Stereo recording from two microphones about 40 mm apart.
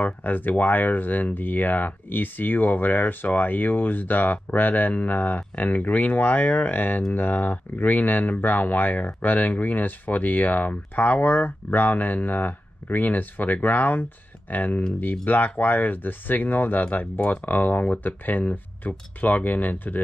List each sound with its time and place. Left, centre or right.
0.0 s speech: left
17.0 s speech: left